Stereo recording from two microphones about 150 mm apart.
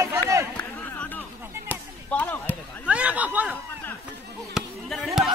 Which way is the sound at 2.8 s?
10° right (ahead or behind).